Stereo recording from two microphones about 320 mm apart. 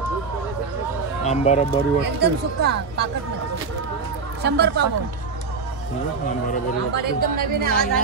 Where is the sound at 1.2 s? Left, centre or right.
Left.